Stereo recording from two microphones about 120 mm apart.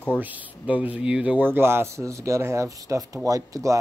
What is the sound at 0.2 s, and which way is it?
Speech, 15° right (ahead or behind).